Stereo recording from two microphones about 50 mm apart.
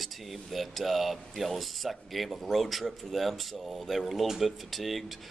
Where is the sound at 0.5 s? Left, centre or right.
Centre.